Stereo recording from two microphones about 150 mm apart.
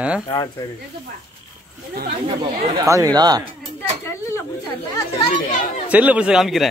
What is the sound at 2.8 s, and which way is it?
Speech, 20° right (ahead or behind).